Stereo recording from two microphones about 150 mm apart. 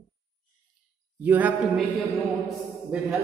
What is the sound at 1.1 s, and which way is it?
Speech, 10° right (ahead or behind).